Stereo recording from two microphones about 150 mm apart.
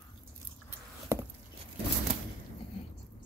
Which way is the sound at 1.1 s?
20° right (ahead or behind).